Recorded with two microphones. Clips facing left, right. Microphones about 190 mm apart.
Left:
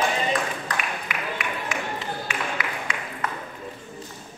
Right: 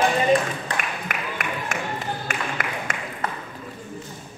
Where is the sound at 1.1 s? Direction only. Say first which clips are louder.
Right 1 dB; 50° right (ahead or behind).